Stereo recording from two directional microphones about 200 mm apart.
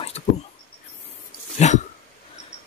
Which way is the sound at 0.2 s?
35° left (ahead or behind).